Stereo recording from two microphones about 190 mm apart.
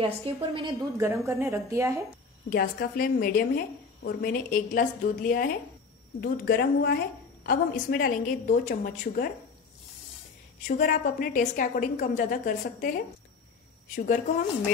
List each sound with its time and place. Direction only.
0.0 s a woman's voice: 25° right (ahead or behind)
1.0 s a woman's voice: 15° right (ahead or behind)
2.5 s a woman's voice: 50° left (ahead or behind)
10.7 s a woman's voice: 45° left (ahead or behind)